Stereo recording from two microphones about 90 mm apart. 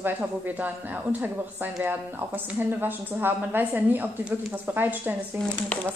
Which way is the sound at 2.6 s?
20° right (ahead or behind).